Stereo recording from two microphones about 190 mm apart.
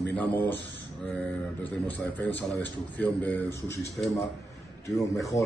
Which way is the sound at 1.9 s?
10° left (ahead or behind).